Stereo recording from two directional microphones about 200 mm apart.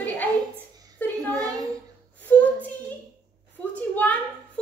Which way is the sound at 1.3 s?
20° right (ahead or behind).